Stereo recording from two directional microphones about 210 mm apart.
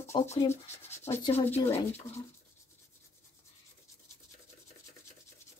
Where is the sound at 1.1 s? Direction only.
30° left (ahead or behind).